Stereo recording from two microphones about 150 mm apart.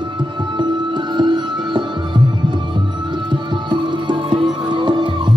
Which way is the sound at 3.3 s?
30° right (ahead or behind).